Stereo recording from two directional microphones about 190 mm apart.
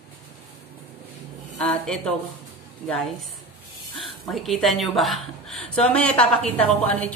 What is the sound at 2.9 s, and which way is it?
A woman's voice, 5° left (ahead or behind).